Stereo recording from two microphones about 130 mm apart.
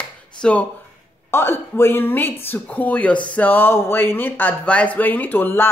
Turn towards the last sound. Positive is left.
turn(degrees=15)  # may be behind; listen again after turning